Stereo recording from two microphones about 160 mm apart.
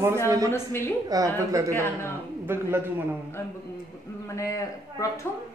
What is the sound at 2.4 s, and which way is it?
Speech, 15° right (ahead or behind).